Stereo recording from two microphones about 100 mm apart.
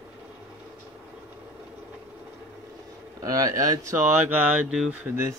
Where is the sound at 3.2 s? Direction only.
35° right (ahead or behind); by 4.9 s 10° right (ahead or behind).